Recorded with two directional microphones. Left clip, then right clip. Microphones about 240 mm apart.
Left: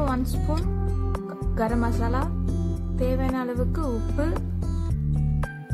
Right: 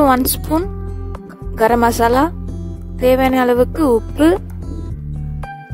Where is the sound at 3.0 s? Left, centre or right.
Right.